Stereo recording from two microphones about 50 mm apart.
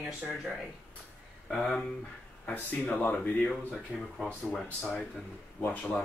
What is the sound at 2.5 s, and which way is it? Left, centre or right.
Speech, left.